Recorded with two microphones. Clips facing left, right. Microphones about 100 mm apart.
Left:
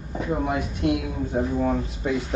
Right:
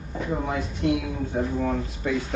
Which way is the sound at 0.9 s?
30° left (ahead or behind).